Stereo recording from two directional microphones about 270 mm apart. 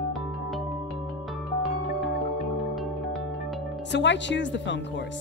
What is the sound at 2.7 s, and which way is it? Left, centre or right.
Music, centre.